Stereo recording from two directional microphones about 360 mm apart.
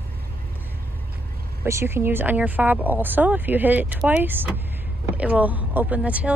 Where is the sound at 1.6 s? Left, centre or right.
Centre.